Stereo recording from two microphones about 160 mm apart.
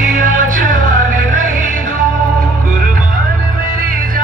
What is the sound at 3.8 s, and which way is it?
Music, 60° right (ahead or behind).